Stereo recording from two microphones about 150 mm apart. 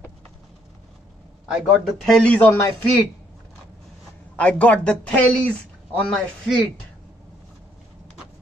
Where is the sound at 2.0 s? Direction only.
5° left (ahead or behind).